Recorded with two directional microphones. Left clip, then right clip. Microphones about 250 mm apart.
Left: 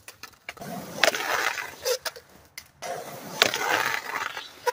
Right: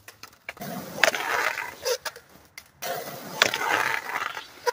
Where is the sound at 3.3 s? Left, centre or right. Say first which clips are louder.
Even; centre.